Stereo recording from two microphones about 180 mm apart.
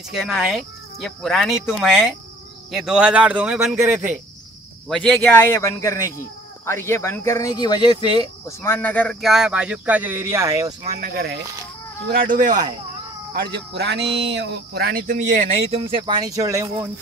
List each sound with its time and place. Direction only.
0.1 s speech: centre (ahead or behind)
3.7 s a man's voice: 15° right (ahead or behind)
4.8 s speech: centre (ahead or behind); by 8.5 s 25° left (ahead or behind)
8.6 s speech: 10° left (ahead or behind); by 10.7 s 15° right (ahead or behind)
10.8 s speech: 50° right (ahead or behind)
13.3 s speech: 60° right (ahead or behind)
15.7 s speech: 25° right (ahead or behind)